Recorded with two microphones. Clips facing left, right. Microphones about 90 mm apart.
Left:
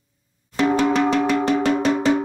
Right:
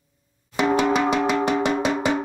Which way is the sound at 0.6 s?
10° right (ahead or behind).